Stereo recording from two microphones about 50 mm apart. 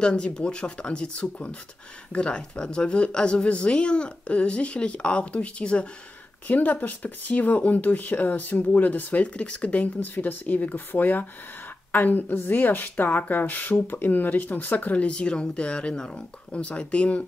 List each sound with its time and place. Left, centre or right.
0.0 s speech: centre
6.4 s speech: left
15.0 s speech: centre